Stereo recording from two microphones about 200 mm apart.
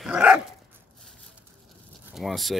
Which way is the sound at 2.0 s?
Centre (ahead or behind).